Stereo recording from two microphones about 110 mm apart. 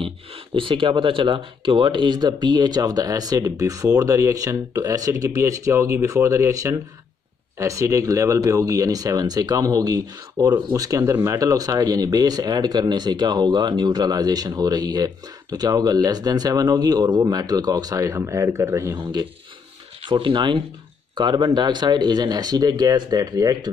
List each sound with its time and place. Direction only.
0.6 s speech: 50° right (ahead or behind); by 18.9 s 25° right (ahead or behind)
20.1 s speech: 50° right (ahead or behind); by 23.7 s 35° right (ahead or behind)